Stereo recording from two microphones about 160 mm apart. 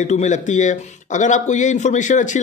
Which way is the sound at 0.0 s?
45° left (ahead or behind).